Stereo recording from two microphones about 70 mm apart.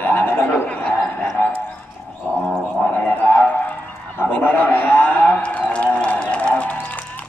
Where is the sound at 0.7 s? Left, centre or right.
Centre.